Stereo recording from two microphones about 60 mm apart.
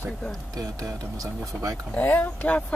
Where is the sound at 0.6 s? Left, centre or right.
Right.